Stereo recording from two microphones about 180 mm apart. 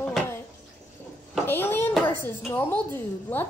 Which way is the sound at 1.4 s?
10° left (ahead or behind).